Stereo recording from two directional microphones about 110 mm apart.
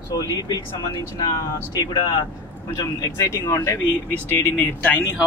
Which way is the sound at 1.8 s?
40° left (ahead or behind).